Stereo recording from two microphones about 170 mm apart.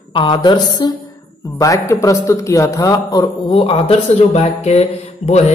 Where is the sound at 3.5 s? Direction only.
35° left (ahead or behind).